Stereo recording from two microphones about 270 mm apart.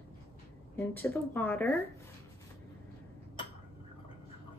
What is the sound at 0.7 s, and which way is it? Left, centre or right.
A woman's voice, centre.